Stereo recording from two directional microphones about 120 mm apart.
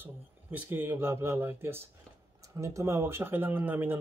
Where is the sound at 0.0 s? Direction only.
15° right (ahead or behind).